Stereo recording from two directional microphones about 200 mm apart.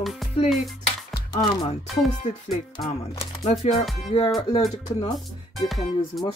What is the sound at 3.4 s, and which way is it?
Speech, 35° left (ahead or behind).